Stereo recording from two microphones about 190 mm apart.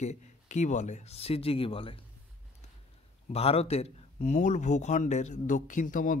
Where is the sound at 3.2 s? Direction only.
30° left (ahead or behind).